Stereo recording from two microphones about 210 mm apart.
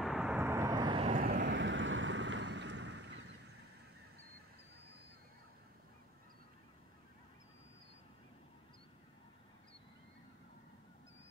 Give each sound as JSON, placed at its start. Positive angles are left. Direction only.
{"t": 0.0, "sound": "vehicle", "side_deg": -5}
{"t": 1.1, "sound": "vehicle", "side_deg": -35}
{"t": 1.4, "sound": "boat", "side_deg": -60}